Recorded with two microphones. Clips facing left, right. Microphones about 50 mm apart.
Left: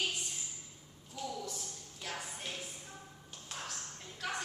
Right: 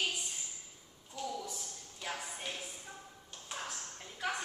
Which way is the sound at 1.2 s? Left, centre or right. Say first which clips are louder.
Right 1 dB; centre.